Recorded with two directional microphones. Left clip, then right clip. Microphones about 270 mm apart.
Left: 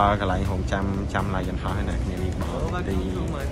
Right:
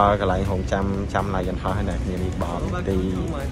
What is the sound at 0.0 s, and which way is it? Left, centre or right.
Speech, centre.